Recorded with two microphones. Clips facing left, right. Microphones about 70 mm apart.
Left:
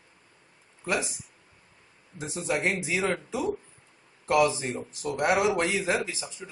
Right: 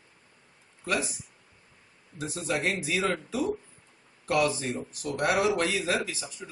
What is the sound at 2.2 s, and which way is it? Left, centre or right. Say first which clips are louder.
A man's voice: left 1 dB; centre.